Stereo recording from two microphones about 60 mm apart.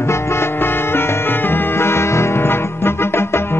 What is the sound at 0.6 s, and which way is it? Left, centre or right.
Music, left.